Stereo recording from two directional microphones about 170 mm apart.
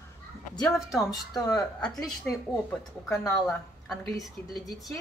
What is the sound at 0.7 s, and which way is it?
Speech, centre (ahead or behind).